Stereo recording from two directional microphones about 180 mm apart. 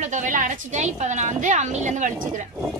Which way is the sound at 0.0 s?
45° right (ahead or behind).